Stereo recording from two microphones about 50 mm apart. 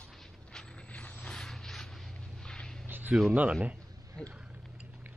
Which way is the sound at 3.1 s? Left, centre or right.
Centre.